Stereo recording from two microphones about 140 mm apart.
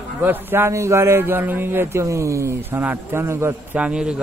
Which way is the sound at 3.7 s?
5° right (ahead or behind).